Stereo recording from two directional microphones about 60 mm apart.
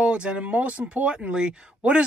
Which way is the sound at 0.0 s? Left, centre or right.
Centre.